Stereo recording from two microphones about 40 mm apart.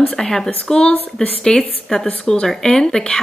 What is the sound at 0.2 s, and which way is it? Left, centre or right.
Speech, centre.